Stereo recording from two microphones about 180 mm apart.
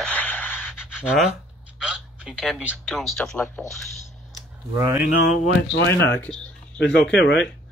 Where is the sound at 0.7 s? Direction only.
5° right (ahead or behind).